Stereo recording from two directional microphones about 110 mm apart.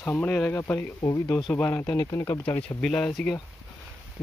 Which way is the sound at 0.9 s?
35° left (ahead or behind).